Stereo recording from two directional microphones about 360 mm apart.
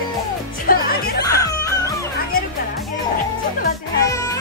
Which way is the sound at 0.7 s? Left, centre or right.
Left.